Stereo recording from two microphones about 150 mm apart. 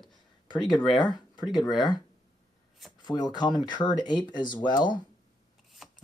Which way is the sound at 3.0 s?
30° left (ahead or behind).